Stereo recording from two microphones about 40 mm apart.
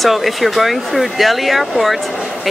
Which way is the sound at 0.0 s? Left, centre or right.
Centre.